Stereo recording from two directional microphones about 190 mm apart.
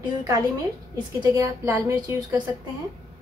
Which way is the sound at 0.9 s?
20° right (ahead or behind).